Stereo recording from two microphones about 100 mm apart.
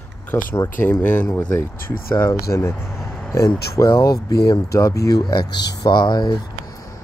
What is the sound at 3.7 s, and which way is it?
Speech, 35° left (ahead or behind).